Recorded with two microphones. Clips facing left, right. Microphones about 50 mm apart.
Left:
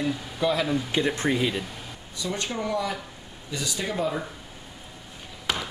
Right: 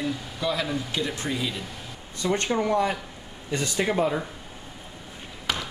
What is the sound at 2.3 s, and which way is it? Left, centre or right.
Speech, right.